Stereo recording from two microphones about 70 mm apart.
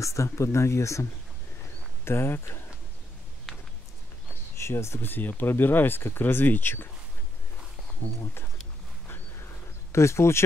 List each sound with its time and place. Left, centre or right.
0.0 s speech: left
2.0 s speech: left
4.6 s speech: left
9.4 s a sound: left